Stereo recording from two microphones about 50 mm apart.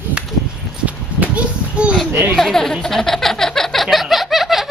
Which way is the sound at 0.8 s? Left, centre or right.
Right.